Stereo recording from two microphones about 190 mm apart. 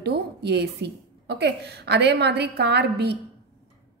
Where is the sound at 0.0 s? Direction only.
60° right (ahead or behind).